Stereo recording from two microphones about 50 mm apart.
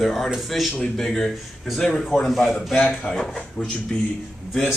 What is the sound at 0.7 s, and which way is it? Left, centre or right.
A man's voice, centre.